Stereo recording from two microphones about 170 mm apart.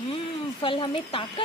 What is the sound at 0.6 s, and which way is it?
Speech, 30° left (ahead or behind).